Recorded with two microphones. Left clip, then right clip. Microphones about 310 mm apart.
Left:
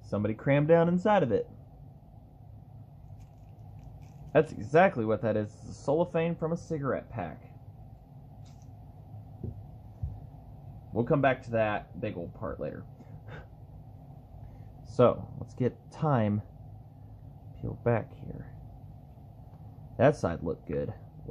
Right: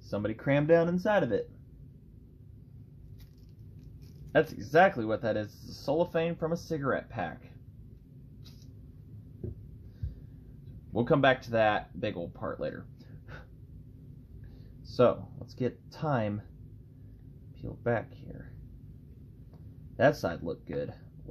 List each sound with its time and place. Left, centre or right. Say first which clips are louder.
0.1 s speech: left 1 dB; centre
4.3 s speech: left 1 dB; centre
10.9 s speech: right 2 dB; centre
15.0 s speech: left 1 dB; centre
18.3 s speech: left 2 dB; centre
20.0 s speech: left 1 dB; centre